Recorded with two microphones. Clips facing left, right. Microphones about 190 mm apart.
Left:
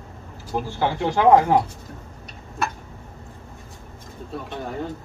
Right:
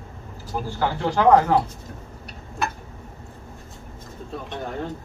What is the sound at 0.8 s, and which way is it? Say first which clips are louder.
Speech: left 1 dB; 20° left (ahead or behind).